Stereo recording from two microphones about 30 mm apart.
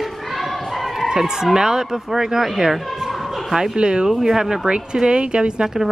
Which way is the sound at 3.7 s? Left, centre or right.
Right.